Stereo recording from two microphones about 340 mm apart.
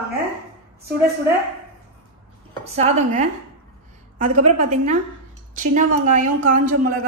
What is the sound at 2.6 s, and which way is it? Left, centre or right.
Speech, centre.